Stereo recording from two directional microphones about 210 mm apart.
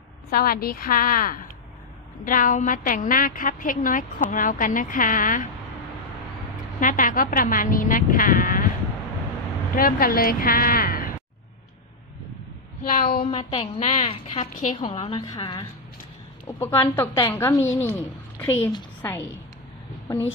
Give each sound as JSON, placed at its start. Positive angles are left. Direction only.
{"t": 0.3, "sound": "a woman's voice", "side_deg": 45}
{"t": 6.8, "sound": "a woman's voice", "side_deg": 40}
{"t": 9.8, "sound": "speech", "side_deg": 45}
{"t": 12.8, "sound": "speech", "side_deg": 45}
{"t": 13.2, "sound": "a woman's voice", "side_deg": 25}
{"t": 16.4, "sound": "a woman's voice", "side_deg": 10}